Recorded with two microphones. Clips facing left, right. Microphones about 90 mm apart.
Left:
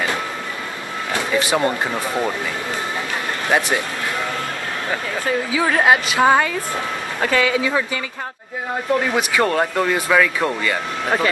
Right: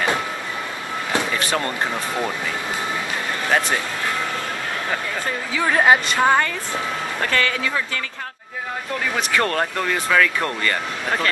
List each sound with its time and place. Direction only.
1.5 s speech: 15° left (ahead or behind)
3.4 s speech: 15° left (ahead or behind)
5.7 s speech: centre (ahead or behind)
9.1 s speech: 10° left (ahead or behind)